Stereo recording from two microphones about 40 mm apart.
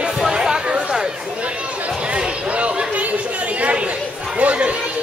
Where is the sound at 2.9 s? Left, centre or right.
Right.